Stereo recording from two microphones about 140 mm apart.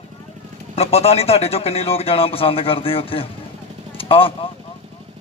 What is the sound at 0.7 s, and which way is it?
Speech, 45° left (ahead or behind).